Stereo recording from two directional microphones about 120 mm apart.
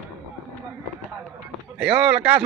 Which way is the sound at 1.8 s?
5° right (ahead or behind).